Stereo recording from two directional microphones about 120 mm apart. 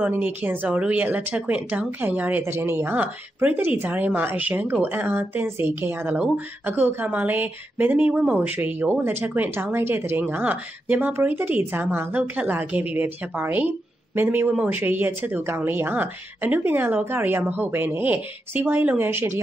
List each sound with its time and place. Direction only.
0.0 s speech: 15° right (ahead or behind)